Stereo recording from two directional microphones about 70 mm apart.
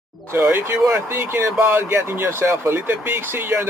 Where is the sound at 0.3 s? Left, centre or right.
Right.